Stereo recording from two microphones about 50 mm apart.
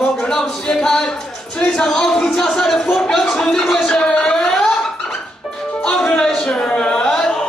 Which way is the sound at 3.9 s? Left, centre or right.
Centre.